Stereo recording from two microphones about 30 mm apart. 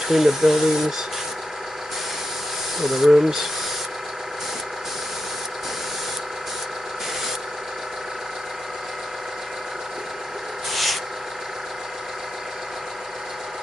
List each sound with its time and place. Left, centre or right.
0.1 s speech: centre
2.8 s speech: centre
3.1 s speech: centre
10.7 s a sound: centre